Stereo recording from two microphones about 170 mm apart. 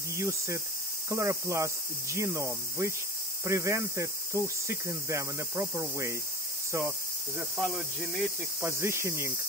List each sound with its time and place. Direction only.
0.1 s speech: 15° right (ahead or behind)
7.3 s cricket: 5° right (ahead or behind)
8.5 s speech: 15° right (ahead or behind)